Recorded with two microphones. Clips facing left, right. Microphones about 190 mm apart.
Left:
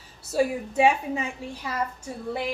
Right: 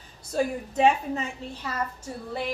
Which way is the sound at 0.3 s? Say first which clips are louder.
Left 3 dB; 5° left (ahead or behind).